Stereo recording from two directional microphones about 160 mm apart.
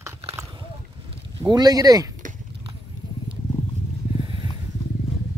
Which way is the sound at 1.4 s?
25° right (ahead or behind).